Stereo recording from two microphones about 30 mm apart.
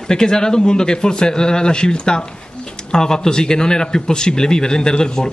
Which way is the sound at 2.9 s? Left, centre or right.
Left.